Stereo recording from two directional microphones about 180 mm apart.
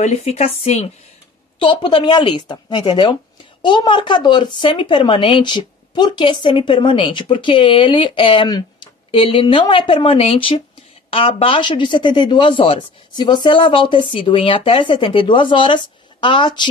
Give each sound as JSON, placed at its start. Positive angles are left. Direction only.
{"t": 0.0, "sound": "speech", "side_deg": 35}